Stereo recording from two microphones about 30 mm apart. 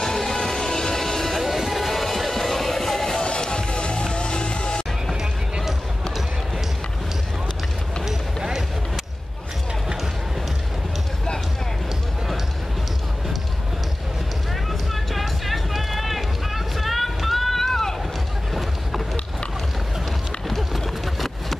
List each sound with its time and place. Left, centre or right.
0.0 s music: centre
1.3 s music: centre
3.3 s music: left
8.0 s run: centre
14.7 s run: centre
18.5 s boat: centre
20.4 s a sound: centre